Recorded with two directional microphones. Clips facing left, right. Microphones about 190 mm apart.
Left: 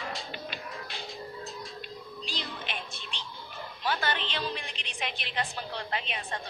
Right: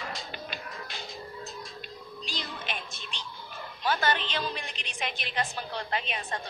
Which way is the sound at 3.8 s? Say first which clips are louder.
Right 3 dB; 45° right (ahead or behind).